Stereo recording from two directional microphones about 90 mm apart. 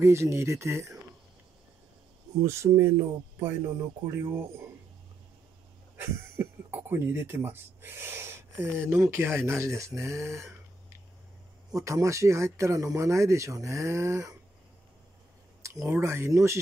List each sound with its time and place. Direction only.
0.0 s speech: 30° right (ahead or behind)
2.4 s speech: 30° right (ahead or behind)
5.9 s speech: 25° right (ahead or behind)
11.7 s speech: 35° right (ahead or behind)
15.6 s a sound: 35° right (ahead or behind)
16.0 s speech: 35° right (ahead or behind)